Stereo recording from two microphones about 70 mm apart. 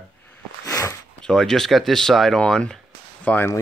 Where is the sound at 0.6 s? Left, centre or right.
Left.